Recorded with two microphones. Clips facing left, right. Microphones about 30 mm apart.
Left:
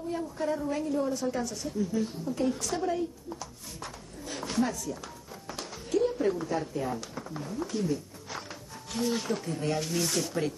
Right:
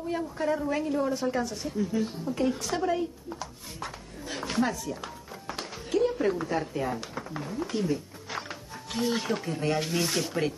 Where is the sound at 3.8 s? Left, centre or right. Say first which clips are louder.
Right 4 dB; centre.